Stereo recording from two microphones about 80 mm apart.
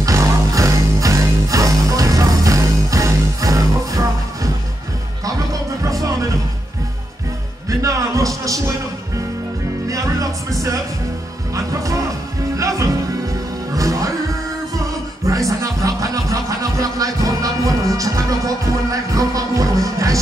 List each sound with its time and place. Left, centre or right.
0.0 s music: right
7.8 s music: right
9.8 s music: right
11.5 s music: right
15.2 s music: right